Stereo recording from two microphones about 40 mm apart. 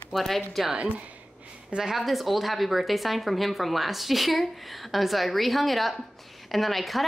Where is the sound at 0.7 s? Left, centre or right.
Right.